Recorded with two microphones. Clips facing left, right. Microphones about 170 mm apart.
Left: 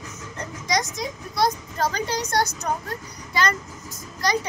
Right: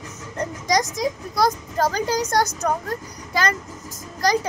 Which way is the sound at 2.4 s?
90° right.